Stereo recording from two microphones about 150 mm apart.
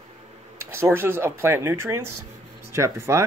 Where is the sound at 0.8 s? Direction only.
15° right (ahead or behind).